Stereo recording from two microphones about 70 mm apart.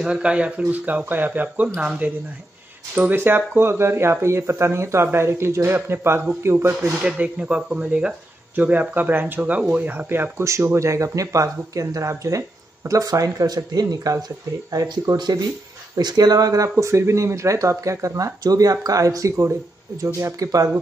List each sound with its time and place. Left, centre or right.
0.0 s speech: centre
2.9 s speech: right
7.0 s speech: centre
8.5 s speech: right
16.0 s speech: right